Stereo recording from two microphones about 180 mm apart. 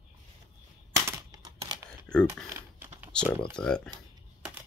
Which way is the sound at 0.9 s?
20° right (ahead or behind).